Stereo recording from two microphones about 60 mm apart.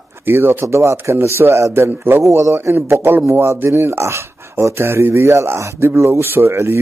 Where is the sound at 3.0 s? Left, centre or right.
Right.